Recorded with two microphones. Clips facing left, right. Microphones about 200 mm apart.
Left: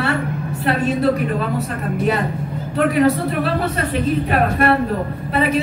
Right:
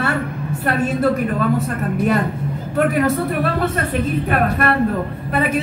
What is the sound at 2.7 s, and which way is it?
A woman's voice, 50° right (ahead or behind).